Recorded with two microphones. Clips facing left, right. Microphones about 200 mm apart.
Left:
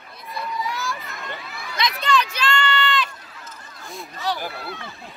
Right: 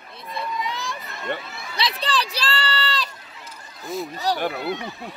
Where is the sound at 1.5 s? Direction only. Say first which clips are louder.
Left 1 dB; 30° right (ahead or behind).